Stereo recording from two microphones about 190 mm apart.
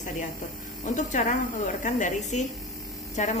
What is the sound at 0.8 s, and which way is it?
Speech, 40° left (ahead or behind).